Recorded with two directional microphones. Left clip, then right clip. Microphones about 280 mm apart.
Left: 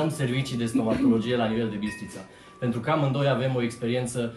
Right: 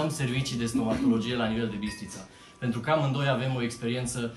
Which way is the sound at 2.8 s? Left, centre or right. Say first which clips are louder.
Left 1 dB; centre.